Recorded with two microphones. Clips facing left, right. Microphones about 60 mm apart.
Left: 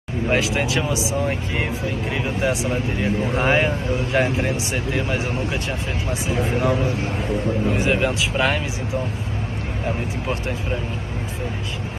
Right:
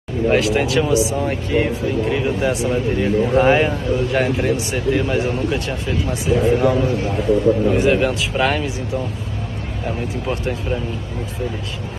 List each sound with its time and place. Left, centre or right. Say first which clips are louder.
0.3 s speech: right 4 dB; centre
9.8 s speech: right 2 dB; centre